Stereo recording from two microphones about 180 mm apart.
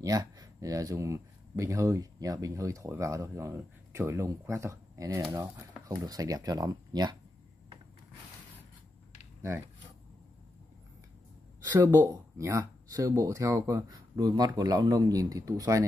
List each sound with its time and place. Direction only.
0.0 s speech: 20° right (ahead or behind)
11.8 s speech: 15° right (ahead or behind)